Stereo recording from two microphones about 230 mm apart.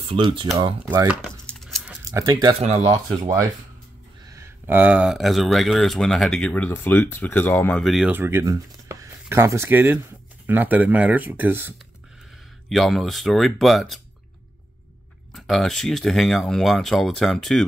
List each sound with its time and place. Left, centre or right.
0.0 s speech: right
1.0 s speech: centre
1.4 s a sound: centre
2.0 s speech: centre
2.6 s speech: right
2.9 s speech: centre
15.3 s speech: centre